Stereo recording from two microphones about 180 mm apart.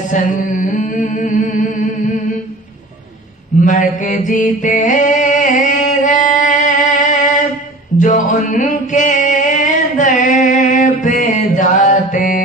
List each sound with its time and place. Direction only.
0.1 s music: 45° left (ahead or behind)
3.6 s mantra: 45° left (ahead or behind)
8.0 s music: 45° left (ahead or behind)